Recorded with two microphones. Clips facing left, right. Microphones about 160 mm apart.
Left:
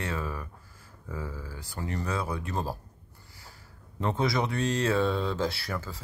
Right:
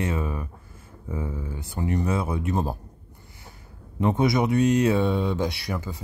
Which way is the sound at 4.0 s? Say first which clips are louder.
Right 6 dB; 20° right (ahead or behind).